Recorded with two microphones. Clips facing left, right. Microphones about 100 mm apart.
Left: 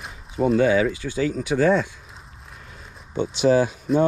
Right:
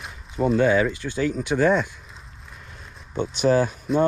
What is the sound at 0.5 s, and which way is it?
Speech, 40° right (ahead or behind).